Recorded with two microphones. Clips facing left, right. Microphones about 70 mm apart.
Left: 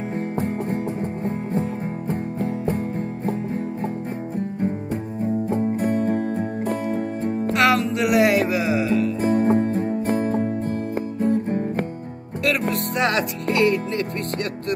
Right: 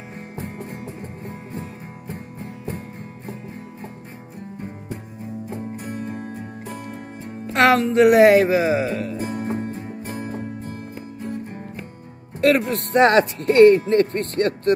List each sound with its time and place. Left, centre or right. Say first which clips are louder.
1.2 s music: left 10 dB; left
5.2 s music: left 11 dB; left
7.5 s music: right 5 dB; right
9.2 s music: left 8 dB; left
12.4 s music: right 4 dB; right